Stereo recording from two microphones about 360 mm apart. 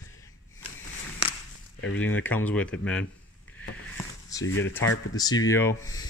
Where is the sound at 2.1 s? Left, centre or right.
Centre.